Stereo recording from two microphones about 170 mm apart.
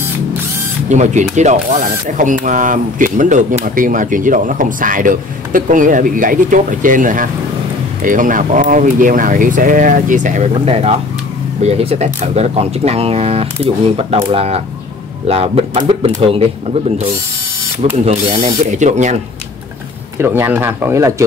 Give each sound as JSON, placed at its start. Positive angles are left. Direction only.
{"t": 0.8, "sound": "speech", "side_deg": -45}
{"t": 18.0, "sound": "speech", "side_deg": -45}
{"t": 20.2, "sound": "speech", "side_deg": -15}